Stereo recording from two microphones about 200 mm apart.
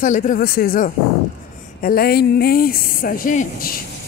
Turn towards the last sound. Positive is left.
turn(degrees=45)  # may be behind; listen again after turning